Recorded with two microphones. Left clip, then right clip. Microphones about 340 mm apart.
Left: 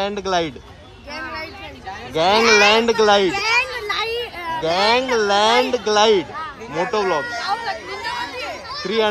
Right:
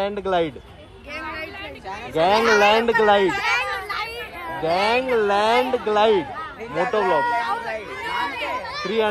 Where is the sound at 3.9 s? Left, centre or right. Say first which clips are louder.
Left 6 dB; centre.